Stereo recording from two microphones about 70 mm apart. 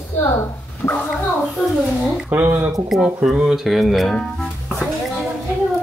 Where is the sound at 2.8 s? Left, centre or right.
Centre.